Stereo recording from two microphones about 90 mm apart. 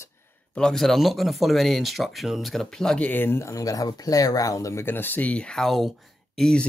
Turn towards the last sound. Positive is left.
turn(degrees=10)  # may be behind; listen again after turning